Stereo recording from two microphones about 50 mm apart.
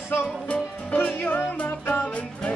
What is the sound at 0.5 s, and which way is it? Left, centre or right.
Music, left.